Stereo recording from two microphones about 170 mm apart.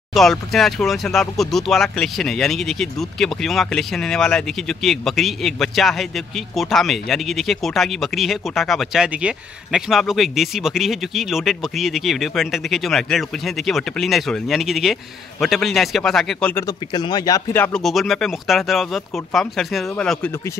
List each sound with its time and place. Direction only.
0.1 s speech: centre (ahead or behind)
16.6 s speech: 25° left (ahead or behind)
17.7 s speech: centre (ahead or behind)